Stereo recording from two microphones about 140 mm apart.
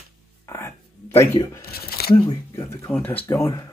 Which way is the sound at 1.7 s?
90° left.